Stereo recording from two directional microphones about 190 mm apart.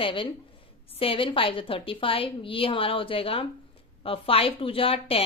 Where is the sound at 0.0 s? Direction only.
25° left (ahead or behind).